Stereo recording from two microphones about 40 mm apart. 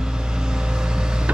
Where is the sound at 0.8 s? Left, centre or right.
Centre.